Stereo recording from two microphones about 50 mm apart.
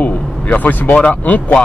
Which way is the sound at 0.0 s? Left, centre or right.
Left.